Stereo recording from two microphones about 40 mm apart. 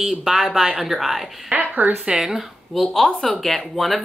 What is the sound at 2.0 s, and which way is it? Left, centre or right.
Speech, centre.